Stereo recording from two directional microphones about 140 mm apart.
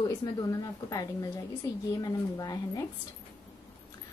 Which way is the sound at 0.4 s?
30° left (ahead or behind).